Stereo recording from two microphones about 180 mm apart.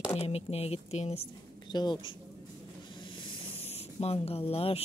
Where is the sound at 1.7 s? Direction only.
25° left (ahead or behind).